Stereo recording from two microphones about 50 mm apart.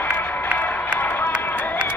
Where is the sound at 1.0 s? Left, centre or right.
Left.